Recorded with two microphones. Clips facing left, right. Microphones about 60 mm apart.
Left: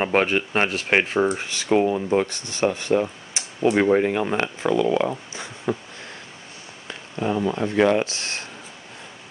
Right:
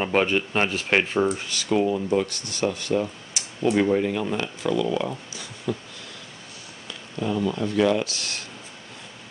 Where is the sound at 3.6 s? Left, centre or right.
Left.